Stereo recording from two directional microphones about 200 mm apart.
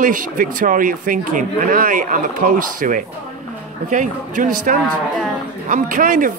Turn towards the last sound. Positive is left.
turn(degrees=-45)  # may be behind; listen again after turning